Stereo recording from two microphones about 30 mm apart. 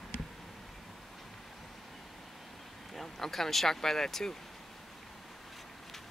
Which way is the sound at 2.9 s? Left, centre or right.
Centre.